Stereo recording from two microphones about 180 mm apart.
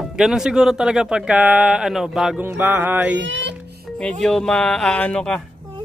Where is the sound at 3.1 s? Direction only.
90° right.